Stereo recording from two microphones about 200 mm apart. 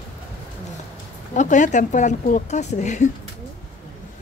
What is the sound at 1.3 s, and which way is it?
Speech, 40° left (ahead or behind).